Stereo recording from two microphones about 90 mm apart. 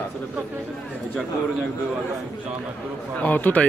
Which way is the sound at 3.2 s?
20° left (ahead or behind).